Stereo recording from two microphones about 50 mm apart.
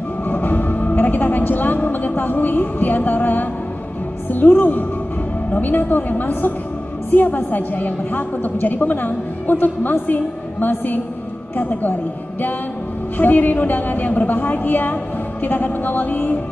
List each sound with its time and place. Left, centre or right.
0.3 s music: left
4.3 s a woman's voice: left
13.2 s a woman's voice: left